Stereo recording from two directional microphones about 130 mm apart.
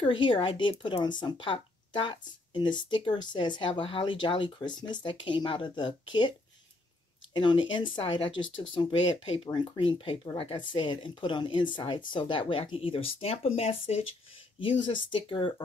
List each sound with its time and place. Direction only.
0.0 s speech: 40° left (ahead or behind)
7.3 s speech: 40° left (ahead or behind)
14.6 s speech: 40° left (ahead or behind)